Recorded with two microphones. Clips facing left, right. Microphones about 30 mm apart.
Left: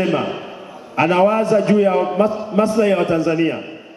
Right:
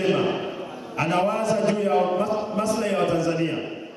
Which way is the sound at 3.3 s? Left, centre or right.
Left.